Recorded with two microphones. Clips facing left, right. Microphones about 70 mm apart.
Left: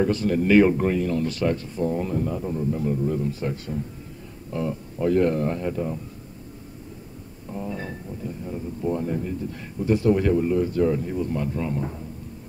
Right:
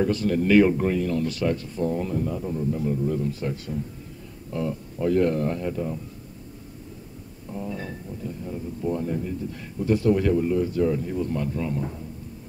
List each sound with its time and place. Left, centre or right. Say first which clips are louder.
0.0 s speech: left 1 dB; left
0.7 s speech: left 1 dB; left
0.9 s speech: left 1 dB; left
1.3 s speech: left 1 dB; left
3.1 s speech: left 1 dB; left
5.7 s speech: left 1 dB; left
7.5 s speech: left 1 dB; left
9.8 s speech: left 1 dB; left
11.1 s speech: left 1 dB; centre
11.5 s speech: left 1 dB; left